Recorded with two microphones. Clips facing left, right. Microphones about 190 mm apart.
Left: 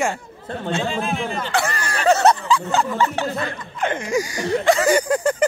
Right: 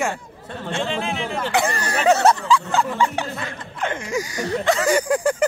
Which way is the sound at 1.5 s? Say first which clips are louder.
Right 2 dB; 20° right (ahead or behind).